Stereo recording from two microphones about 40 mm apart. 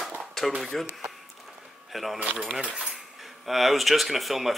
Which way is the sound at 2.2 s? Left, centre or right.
Right.